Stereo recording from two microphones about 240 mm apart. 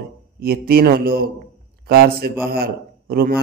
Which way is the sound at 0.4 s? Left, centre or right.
Right.